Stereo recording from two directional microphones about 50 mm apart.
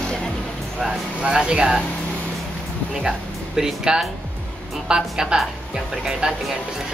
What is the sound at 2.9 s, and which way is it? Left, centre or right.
Speech, centre.